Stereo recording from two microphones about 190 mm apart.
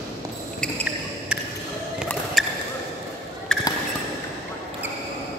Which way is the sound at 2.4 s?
Centre (ahead or behind).